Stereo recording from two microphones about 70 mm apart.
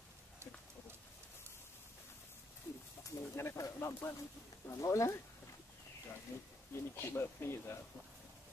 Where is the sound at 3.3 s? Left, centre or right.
Left.